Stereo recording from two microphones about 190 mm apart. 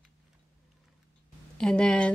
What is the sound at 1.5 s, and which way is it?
Speech, 5° left (ahead or behind).